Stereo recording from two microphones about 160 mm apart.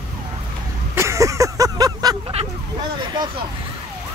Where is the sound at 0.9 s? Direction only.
20° right (ahead or behind).